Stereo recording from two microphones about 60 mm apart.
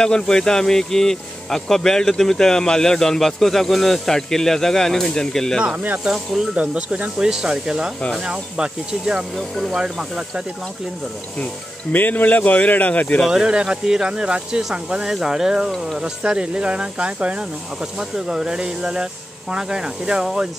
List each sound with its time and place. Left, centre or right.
0.0 s speech: centre
6.0 s speech: centre
6.5 s speech: centre
11.9 s speech: left
13.3 s speech: centre